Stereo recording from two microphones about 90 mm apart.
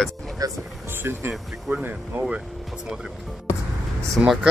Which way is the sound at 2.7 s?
5° right (ahead or behind).